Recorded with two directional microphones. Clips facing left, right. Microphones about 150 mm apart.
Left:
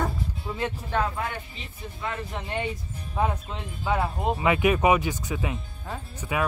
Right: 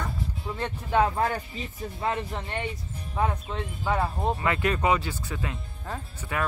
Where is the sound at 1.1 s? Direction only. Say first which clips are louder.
Right 5 dB; 40° right (ahead or behind).